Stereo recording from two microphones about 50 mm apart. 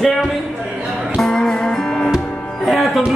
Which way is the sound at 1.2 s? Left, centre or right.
Centre.